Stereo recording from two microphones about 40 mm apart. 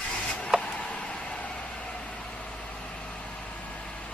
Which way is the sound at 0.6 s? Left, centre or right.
Left.